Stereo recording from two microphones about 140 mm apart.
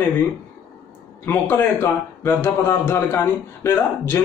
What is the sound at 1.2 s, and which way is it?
A man's voice, 15° left (ahead or behind).